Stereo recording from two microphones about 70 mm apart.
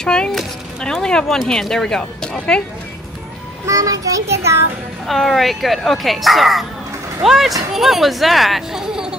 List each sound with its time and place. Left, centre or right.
0.0 s speech: centre
3.6 s child singing: right
5.0 s speech: centre